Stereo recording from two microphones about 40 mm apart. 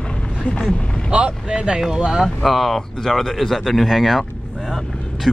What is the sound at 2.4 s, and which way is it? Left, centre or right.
Speech, centre.